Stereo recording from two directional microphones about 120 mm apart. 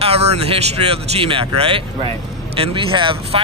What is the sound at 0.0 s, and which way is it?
Speech, 60° right (ahead or behind).